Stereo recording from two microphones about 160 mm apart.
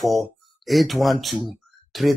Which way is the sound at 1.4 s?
Centre (ahead or behind).